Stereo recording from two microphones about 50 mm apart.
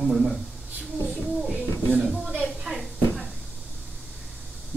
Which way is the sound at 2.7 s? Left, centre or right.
Centre.